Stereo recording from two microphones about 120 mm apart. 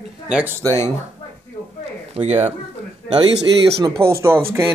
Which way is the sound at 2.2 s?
60° right (ahead or behind).